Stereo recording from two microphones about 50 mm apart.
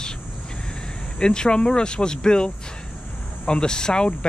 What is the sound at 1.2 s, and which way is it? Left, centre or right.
Speech, centre.